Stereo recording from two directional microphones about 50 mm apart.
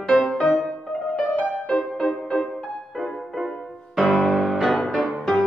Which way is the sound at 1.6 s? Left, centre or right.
Centre.